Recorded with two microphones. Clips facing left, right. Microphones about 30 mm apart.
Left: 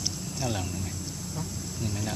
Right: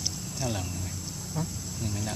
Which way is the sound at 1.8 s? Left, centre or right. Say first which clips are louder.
Left 1 dB; centre.